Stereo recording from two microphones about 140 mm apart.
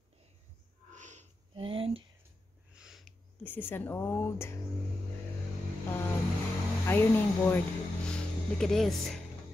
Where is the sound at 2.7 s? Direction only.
5° right (ahead or behind).